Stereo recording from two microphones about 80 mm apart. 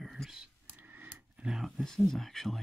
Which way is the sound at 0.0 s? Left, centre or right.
Centre.